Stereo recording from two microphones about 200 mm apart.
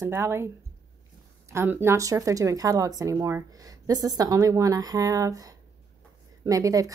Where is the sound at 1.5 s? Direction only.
10° right (ahead or behind).